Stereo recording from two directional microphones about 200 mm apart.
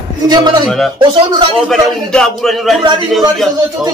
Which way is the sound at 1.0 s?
25° right (ahead or behind).